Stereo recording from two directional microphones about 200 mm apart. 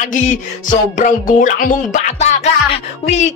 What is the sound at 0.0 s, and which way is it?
Music, 40° left (ahead or behind).